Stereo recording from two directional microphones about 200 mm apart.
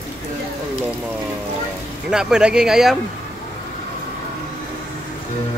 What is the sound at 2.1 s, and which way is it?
Speech, 5° right (ahead or behind).